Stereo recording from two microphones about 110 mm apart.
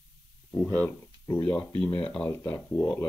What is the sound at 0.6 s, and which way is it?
Speech, 15° left (ahead or behind).